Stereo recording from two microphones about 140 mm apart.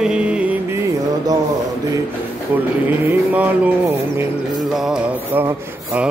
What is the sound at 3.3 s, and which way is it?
Mantra, 10° right (ahead or behind).